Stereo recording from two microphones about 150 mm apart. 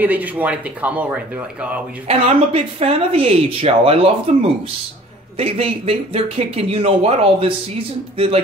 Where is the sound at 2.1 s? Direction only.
40° right (ahead or behind).